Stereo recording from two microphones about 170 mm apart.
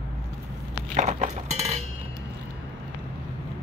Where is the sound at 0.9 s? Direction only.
40° right (ahead or behind).